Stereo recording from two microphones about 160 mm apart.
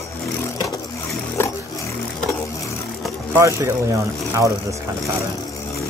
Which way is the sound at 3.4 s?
15° right (ahead or behind).